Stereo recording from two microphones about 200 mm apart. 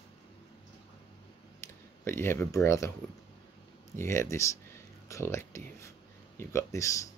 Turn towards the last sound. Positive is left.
turn(degrees=15)  # may be behind; listen again after turning